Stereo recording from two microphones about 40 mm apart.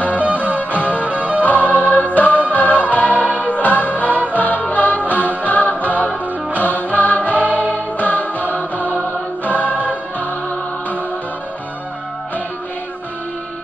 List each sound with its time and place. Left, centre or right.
0.6 s music: left
1.0 s music: right
1.4 s music: left
9.4 s choir: left